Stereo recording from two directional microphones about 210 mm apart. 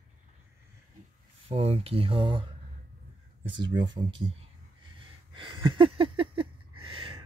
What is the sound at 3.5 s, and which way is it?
Speech, 20° right (ahead or behind).